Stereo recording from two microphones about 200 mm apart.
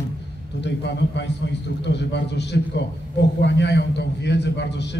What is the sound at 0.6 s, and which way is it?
A man's voice, 60° left (ahead or behind).